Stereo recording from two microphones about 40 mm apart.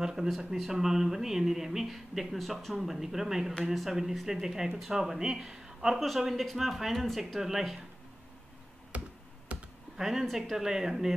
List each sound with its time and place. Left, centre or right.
0.0 s speech: centre
2.3 s a woman's voice: centre
5.9 s speech: centre
8.9 s computer keyboard: right
9.9 s speech: centre